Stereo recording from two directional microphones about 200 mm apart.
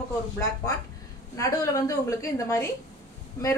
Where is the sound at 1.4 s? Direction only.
15° left (ahead or behind).